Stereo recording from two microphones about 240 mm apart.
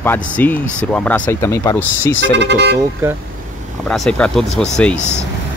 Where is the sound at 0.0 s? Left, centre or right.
Centre.